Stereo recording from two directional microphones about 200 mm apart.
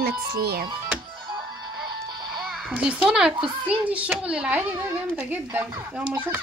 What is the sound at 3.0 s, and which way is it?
Speech, 5° right (ahead or behind).